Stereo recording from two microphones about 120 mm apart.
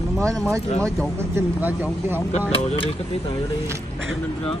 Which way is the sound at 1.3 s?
15° right (ahead or behind).